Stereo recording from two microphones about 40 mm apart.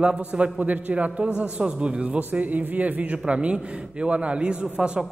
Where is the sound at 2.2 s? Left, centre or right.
Right.